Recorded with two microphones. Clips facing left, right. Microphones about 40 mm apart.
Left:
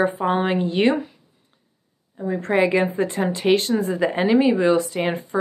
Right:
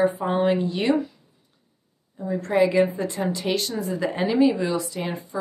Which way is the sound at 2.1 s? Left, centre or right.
Left.